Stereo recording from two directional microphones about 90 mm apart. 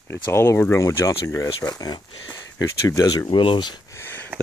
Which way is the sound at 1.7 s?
50° left (ahead or behind).